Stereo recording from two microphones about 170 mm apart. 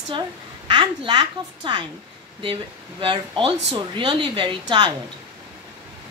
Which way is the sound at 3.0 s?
30° right (ahead or behind).